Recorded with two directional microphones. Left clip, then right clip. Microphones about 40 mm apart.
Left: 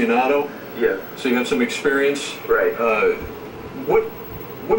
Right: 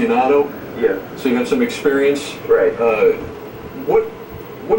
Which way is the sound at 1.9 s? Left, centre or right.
Left.